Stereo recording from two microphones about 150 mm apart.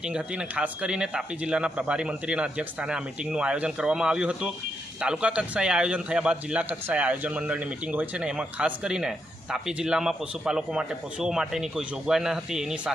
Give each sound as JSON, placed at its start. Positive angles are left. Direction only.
{"t": 0.0, "sound": "a man's voice", "side_deg": -5}